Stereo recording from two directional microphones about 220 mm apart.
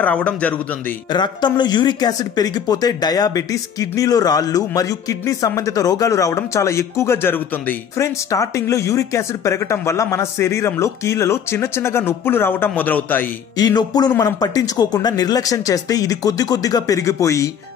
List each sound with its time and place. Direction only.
0.0 s speech: 5° left (ahead or behind)
1.1 s speech: 20° left (ahead or behind)